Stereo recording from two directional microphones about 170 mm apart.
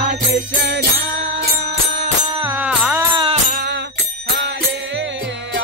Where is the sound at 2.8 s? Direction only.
15° right (ahead or behind).